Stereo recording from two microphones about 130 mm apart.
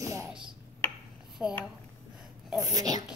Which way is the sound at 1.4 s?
10° right (ahead or behind).